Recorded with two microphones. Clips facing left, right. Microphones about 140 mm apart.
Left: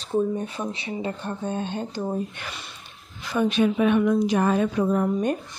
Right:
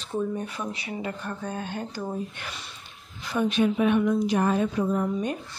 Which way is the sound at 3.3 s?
90° left.